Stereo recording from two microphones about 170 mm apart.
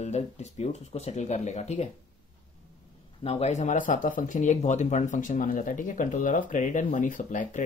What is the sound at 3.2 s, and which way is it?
Speech, 40° left (ahead or behind).